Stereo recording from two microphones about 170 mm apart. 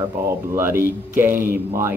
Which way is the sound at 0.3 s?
15° right (ahead or behind).